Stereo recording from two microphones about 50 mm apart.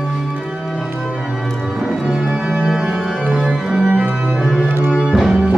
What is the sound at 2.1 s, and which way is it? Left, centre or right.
Organ, centre.